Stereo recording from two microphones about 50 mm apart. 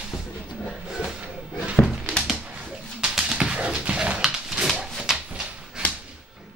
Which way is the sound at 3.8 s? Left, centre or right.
Right.